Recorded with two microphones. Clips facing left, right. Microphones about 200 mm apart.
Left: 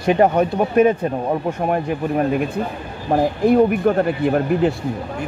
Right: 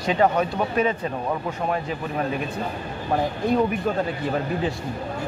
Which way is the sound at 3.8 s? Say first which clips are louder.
Left 8 dB; 60° left (ahead or behind).